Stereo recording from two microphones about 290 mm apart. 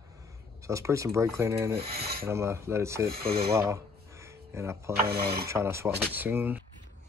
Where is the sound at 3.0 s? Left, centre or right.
Right.